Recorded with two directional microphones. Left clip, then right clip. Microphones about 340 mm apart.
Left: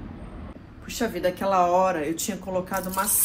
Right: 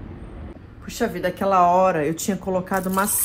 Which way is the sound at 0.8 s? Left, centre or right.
Right.